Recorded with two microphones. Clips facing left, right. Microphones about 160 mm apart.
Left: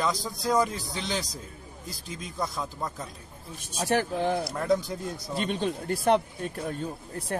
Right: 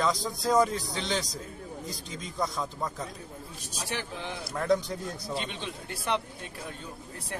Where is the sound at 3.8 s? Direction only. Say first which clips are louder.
Left 11 dB; 45° left (ahead or behind).